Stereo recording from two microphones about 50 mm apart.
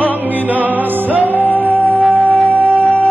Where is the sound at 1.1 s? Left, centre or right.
Right.